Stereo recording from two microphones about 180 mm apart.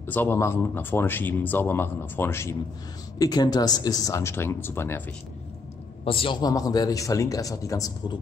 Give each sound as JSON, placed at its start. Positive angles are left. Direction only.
{"t": 0.0, "sound": "a man's voice", "side_deg": 10}
{"t": 6.0, "sound": "a man's voice", "side_deg": 30}